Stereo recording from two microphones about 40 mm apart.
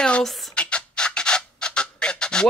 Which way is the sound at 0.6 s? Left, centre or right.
Left.